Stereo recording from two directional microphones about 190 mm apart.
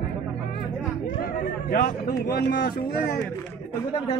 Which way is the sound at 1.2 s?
50° left (ahead or behind).